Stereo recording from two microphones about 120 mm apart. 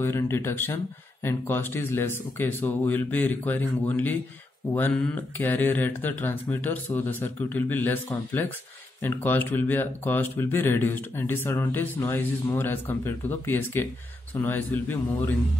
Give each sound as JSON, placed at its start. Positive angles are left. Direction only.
{"t": 0.0, "sound": "speech", "side_deg": 20}